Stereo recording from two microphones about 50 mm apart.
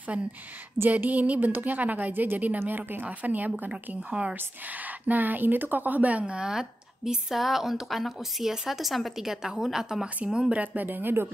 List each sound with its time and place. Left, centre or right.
0.8 s speech: right
4.1 s a woman's voice: centre
5.0 s a woman's voice: right; by 10.0 s centre
10.2 s speech: centre
10.8 s speech: right